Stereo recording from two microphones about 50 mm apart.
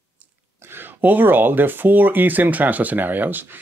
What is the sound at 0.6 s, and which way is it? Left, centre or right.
Speech, right.